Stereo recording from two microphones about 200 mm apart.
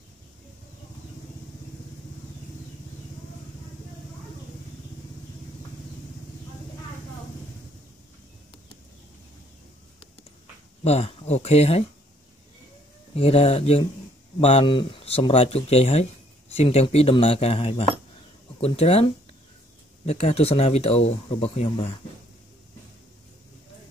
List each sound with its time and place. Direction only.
10.8 s speech: 30° left (ahead or behind)
13.1 s speech: 30° left (ahead or behind)
20.1 s speech: 35° left (ahead or behind)